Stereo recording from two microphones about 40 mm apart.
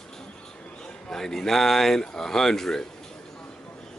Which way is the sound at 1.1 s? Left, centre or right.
Centre.